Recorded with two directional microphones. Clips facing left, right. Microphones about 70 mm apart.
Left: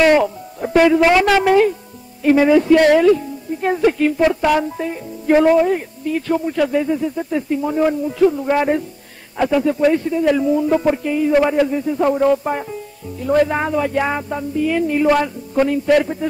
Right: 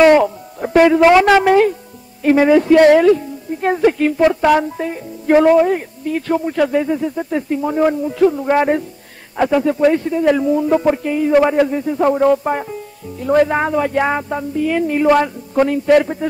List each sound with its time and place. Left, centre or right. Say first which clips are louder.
0.1 s music: right 3 dB; right
1.0 s a woman's voice: right 4 dB; right
1.4 s speech: right 1 dB; right
4.2 s speech: right 4 dB; right
4.7 s a man's voice: right 1 dB; right